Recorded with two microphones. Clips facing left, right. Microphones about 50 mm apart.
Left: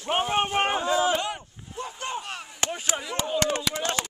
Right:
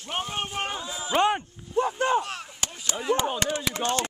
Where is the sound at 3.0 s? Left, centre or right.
Right.